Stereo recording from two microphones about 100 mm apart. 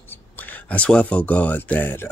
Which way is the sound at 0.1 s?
20° left (ahead or behind).